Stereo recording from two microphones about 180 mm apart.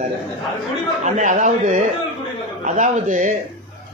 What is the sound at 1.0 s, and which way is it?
Speech, 40° right (ahead or behind).